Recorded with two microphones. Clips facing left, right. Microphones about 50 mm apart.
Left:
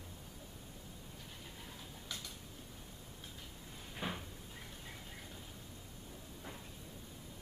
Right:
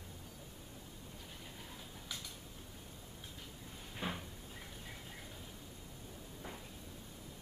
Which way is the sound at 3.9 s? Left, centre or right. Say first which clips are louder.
Even; centre.